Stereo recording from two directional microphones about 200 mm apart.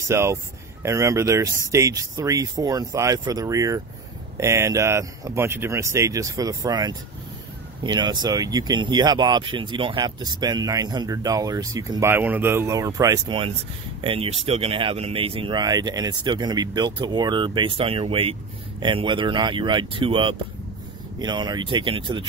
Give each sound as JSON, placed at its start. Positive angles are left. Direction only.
{"t": 0.1, "sound": "speech", "side_deg": -15}